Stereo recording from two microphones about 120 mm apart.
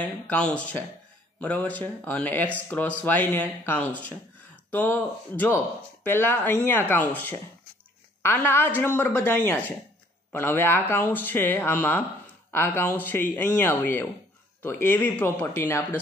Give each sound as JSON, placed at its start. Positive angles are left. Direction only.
{"t": 0.0, "sound": "speech", "side_deg": 10}